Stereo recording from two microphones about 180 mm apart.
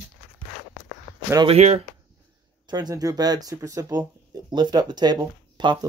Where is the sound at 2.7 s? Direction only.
20° right (ahead or behind).